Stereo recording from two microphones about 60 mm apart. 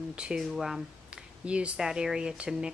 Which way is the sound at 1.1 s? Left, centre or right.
Centre.